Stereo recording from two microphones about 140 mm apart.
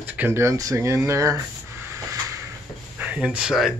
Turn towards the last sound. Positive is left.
turn(degrees=-5)  # may be behind; listen again after turning